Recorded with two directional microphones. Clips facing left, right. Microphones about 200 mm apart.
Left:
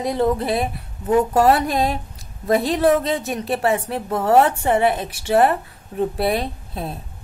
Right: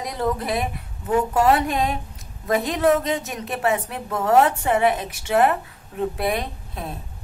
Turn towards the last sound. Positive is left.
turn(degrees=30)  # may be behind; listen again after turning